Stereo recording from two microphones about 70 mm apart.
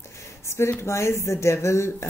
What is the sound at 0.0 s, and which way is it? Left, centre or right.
Speech, left.